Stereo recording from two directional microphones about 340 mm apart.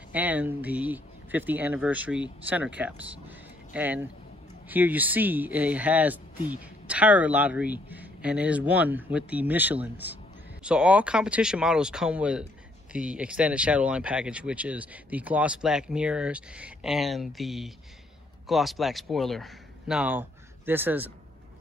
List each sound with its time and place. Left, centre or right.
0.1 s speech: centre